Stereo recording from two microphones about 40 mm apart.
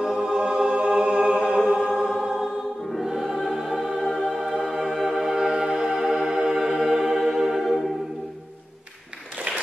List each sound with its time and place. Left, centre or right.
0.0 s music: centre
1.7 s chant: centre
2.0 s choir: centre
3.8 s music: centre